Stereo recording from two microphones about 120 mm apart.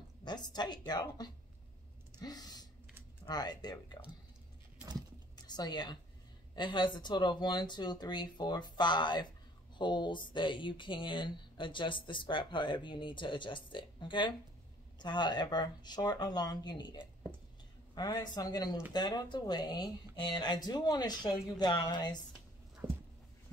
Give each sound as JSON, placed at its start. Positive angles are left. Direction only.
{"t": 0.2, "sound": "speech", "side_deg": 35}
{"t": 5.4, "sound": "a woman's voice", "side_deg": 35}
{"t": 22.8, "sound": "a sound", "side_deg": -40}